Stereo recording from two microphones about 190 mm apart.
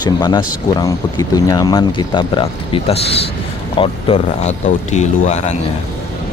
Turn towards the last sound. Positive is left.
turn(degrees=35)  # may be behind; listen again after turning